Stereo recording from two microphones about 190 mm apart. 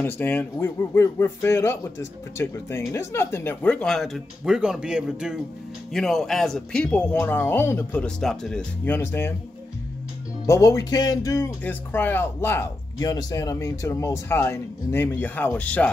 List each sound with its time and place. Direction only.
0.0 s speech: 10° left (ahead or behind)
10.4 s speech: 15° left (ahead or behind)